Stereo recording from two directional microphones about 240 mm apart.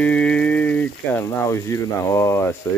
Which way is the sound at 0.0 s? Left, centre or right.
Centre.